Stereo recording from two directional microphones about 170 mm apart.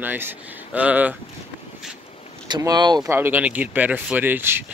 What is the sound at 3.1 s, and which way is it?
Speech, 10° right (ahead or behind).